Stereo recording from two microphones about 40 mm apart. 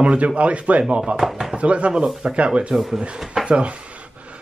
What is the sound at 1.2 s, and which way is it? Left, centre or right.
Speech, centre.